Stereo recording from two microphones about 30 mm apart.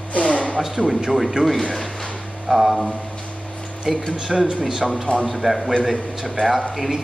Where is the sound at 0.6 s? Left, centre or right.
Centre.